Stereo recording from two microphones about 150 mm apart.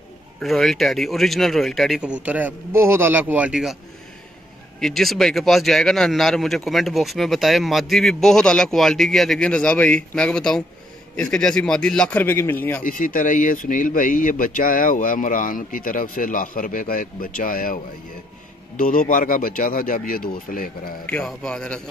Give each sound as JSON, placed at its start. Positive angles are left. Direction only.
{"t": 0.4, "sound": "speech", "side_deg": 0}
{"t": 4.7, "sound": "a man's voice", "side_deg": 5}
{"t": 12.8, "sound": "speech", "side_deg": 65}
{"t": 18.8, "sound": "speech", "side_deg": 65}
{"t": 21.1, "sound": "speech", "side_deg": 5}